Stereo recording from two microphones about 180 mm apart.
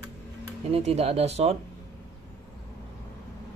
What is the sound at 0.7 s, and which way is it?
Speech, 35° right (ahead or behind).